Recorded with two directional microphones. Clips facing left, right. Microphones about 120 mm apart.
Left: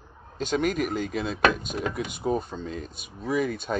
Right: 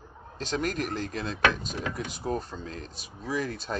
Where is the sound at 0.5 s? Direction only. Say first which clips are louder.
Left 4 dB; 5° left (ahead or behind).